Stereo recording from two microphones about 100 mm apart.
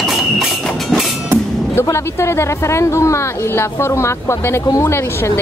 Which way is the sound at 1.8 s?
30° left (ahead or behind).